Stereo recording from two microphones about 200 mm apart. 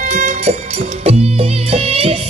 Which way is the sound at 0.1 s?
35° right (ahead or behind).